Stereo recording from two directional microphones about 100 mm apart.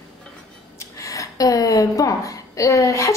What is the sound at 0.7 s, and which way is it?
Speech, 30° left (ahead or behind).